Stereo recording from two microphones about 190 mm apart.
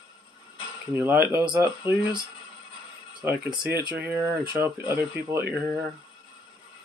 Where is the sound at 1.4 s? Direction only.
20° right (ahead or behind).